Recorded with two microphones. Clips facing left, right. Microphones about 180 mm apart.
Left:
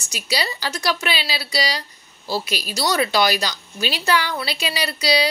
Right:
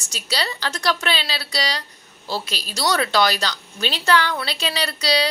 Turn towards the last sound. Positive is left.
turn(degrees=10)  # may be behind; listen again after turning